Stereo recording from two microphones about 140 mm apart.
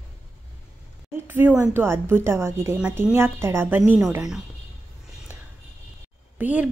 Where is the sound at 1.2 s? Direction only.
15° right (ahead or behind).